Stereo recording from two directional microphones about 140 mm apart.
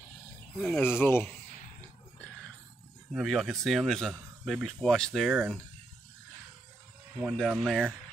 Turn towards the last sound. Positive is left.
turn(degrees=5)  # may be behind; listen again after turning